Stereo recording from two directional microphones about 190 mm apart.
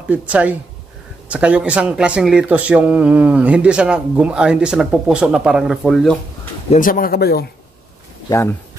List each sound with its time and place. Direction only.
0.1 s speech: 5° right (ahead or behind)
6.7 s speech: 45° left (ahead or behind)
8.3 s speech: 15° left (ahead or behind)